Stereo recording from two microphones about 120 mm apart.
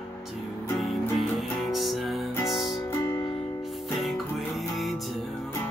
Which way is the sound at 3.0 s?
25° left (ahead or behind).